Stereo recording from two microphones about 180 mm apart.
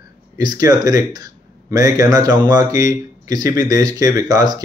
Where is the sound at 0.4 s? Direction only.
20° right (ahead or behind).